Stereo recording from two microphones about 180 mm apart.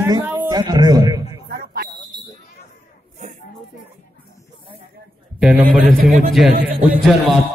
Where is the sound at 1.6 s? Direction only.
60° right (ahead or behind).